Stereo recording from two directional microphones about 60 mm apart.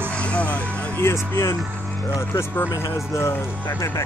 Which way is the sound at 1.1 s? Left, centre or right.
Left.